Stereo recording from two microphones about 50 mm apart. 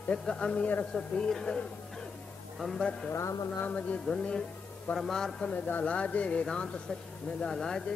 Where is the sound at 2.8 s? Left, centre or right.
Centre.